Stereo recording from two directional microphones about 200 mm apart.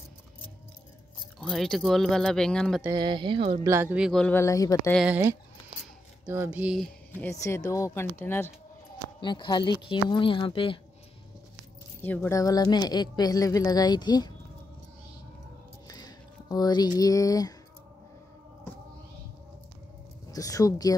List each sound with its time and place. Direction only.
1.4 s speech: centre (ahead or behind)
2.8 s speech: 20° right (ahead or behind)
3.6 s speech: 10° right (ahead or behind); by 4.9 s 15° left (ahead or behind)
4.9 s speech: 5° right (ahead or behind)
7.2 s speech: 15° left (ahead or behind)
9.2 s a woman's voice: 20° left (ahead or behind)
12.0 s a woman's voice: 10° left (ahead or behind)
15.9 s a sound: 20° left (ahead or behind)
17.0 s speech: 15° left (ahead or behind)
20.2 s speech: 15° left (ahead or behind)